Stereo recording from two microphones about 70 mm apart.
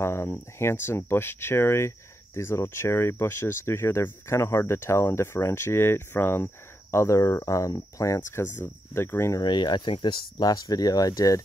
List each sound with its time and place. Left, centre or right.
0.0 s speech: left
9.4 s speech: left